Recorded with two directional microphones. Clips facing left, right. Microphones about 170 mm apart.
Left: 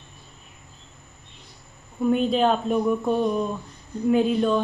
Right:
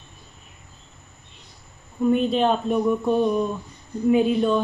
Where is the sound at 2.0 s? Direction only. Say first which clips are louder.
Right 1 dB; centre (ahead or behind).